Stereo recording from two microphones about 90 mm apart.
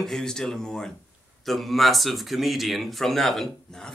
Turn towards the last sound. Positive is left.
turn(degrees=0)  # may be behind; listen again after turning